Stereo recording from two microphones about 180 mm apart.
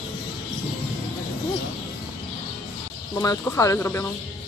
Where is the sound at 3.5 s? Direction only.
15° left (ahead or behind).